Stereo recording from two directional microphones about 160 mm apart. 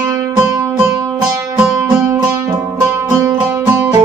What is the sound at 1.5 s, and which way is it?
Music, 5° right (ahead or behind).